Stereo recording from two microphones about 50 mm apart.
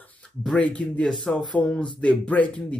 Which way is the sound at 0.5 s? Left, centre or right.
Left.